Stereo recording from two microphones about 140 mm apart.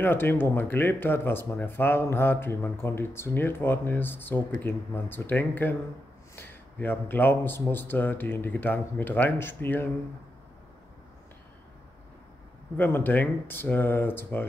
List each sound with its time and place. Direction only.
0.0 s speech: 15° left (ahead or behind)
12.7 s speech: 15° left (ahead or behind)